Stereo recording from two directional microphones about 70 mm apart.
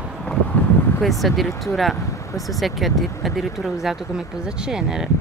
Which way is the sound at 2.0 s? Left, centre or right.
Left.